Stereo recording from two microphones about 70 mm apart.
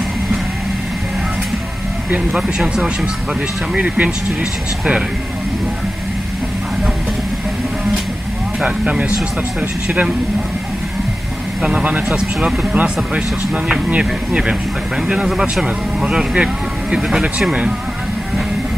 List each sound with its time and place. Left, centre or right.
2.1 s speech: centre
8.5 s speech: centre
11.6 s speech: centre